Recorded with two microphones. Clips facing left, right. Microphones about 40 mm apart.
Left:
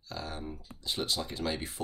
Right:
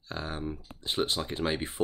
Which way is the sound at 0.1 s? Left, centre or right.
Right.